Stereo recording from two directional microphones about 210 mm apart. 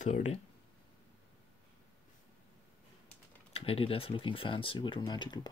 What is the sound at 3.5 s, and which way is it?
Speech, 25° left (ahead or behind).